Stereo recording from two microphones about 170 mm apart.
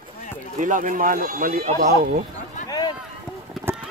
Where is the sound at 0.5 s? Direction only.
50° right (ahead or behind).